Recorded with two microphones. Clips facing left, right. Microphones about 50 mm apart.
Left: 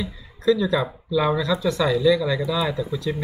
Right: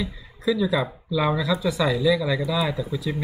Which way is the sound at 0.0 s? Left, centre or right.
Centre.